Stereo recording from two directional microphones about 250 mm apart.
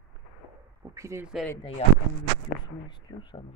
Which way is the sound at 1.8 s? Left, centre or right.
Left.